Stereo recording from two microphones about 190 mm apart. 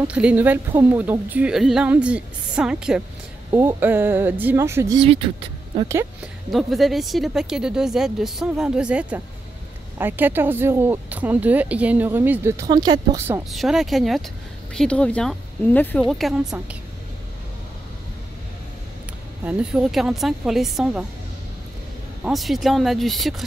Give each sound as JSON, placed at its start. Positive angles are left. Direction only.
{"t": 0.0, "sound": "speech", "side_deg": -5}
{"t": 5.0, "sound": "speech", "side_deg": -30}
{"t": 5.9, "sound": "speech", "side_deg": -15}
{"t": 6.5, "sound": "speech", "side_deg": 0}
{"t": 13.5, "sound": "speech", "side_deg": 0}
{"t": 19.4, "sound": "speech", "side_deg": -5}
{"t": 22.2, "sound": "speech", "side_deg": 0}